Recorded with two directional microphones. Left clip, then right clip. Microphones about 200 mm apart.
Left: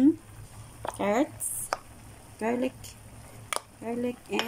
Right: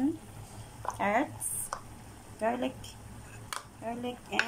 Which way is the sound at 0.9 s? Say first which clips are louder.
Left 2 dB; 20° left (ahead or behind).